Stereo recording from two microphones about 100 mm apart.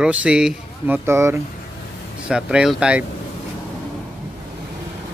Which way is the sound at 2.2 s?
10° right (ahead or behind).